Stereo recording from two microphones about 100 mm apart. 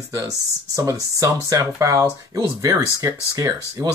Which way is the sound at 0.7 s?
30° right (ahead or behind).